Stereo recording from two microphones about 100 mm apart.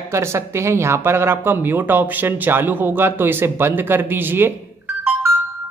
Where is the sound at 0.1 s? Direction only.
25° right (ahead or behind).